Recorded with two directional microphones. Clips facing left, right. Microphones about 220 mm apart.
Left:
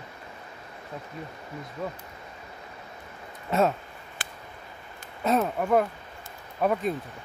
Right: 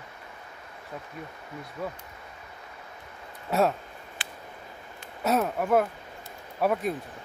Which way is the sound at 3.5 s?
Centre (ahead or behind).